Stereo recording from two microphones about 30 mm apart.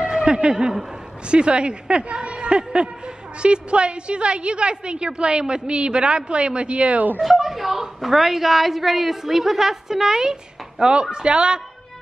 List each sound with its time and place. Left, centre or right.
0.1 s a sound: right
1.2 s a woman's voice: right
7.2 s a woman's voice: centre
10.8 s a woman's voice: right